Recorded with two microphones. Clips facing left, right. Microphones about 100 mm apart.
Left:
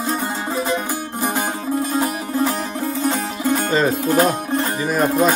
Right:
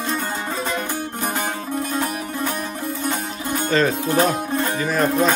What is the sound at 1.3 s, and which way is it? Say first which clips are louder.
Music: left 5 dB; 35° left (ahead or behind).